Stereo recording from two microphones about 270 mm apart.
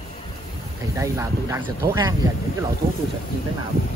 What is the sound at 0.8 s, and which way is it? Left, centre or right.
Speech, centre.